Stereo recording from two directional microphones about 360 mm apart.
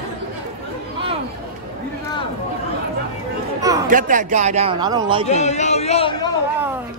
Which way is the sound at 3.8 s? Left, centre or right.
Right.